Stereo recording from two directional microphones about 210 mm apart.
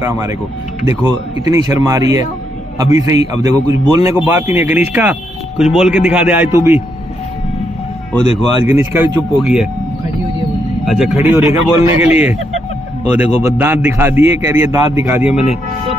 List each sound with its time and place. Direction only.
0.0 s a man's voice: 15° right (ahead or behind)
1.5 s a man's voice: 15° right (ahead or behind)
4.2 s a man's voice: 5° right (ahead or behind)
8.6 s a man's voice: 10° right (ahead or behind)
10.9 s speech: 5° right (ahead or behind)
13.4 s a man's voice: 10° right (ahead or behind)